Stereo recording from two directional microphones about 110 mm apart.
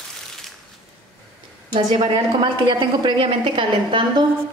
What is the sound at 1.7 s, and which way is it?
A woman's voice, 50° right (ahead or behind).